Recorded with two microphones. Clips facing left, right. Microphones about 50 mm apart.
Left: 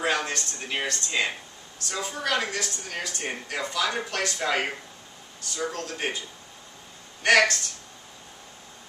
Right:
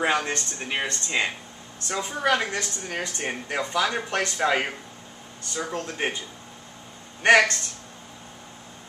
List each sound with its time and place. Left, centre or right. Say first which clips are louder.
0.0 s a woman's voice: right 2 dB; right
7.2 s a woman's voice: right 2 dB; right